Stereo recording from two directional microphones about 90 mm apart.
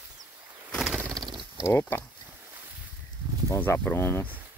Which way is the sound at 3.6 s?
20° left (ahead or behind).